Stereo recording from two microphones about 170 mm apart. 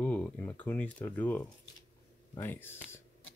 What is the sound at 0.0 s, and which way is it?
Speech, 10° left (ahead or behind).